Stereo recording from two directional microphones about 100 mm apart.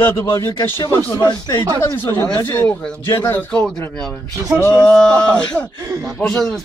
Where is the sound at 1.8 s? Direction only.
25° left (ahead or behind).